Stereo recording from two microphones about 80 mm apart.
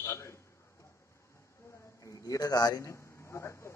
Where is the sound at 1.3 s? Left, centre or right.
Left.